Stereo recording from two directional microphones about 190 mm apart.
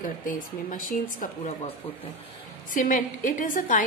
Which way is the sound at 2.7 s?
45° left (ahead or behind).